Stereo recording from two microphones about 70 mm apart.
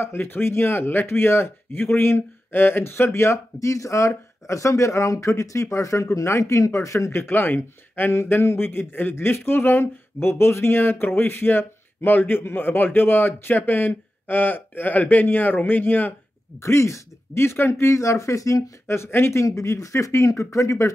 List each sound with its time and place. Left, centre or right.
0.0 s speech: left
7.1 s speech: left
16.5 s speech: left
19.4 s speech: left